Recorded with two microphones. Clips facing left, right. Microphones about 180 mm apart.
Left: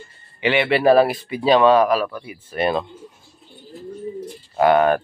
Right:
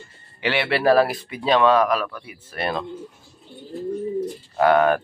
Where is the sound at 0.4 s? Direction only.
15° left (ahead or behind).